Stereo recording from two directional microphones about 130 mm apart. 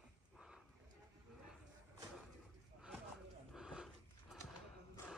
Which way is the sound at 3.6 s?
5° right (ahead or behind).